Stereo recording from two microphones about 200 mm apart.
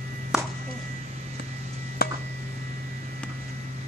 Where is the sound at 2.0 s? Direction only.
50° left (ahead or behind).